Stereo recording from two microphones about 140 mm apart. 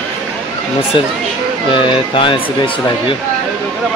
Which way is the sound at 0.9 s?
40° left (ahead or behind).